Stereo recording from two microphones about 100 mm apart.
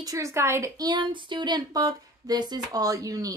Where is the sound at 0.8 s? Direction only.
45° right (ahead or behind).